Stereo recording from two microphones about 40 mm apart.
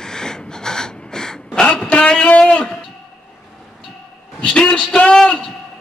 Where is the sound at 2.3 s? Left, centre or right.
Left.